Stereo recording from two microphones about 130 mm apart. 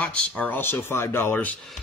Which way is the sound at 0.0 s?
10° left (ahead or behind).